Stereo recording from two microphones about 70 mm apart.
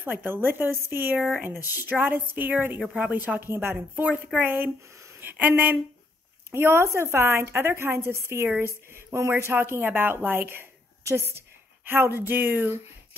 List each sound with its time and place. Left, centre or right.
0.0 s speech: right
2.8 s speech: centre
3.1 s speech: right
6.5 s a woman's voice: right